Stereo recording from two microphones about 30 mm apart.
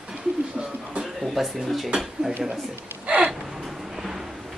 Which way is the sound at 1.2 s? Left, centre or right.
Centre.